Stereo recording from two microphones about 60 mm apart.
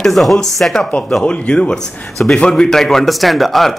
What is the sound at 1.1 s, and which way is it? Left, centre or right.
Speech, centre.